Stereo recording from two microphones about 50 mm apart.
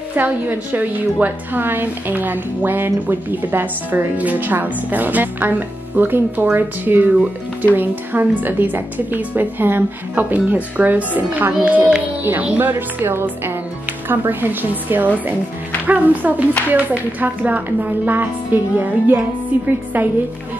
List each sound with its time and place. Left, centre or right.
0.1 s a woman's voice: right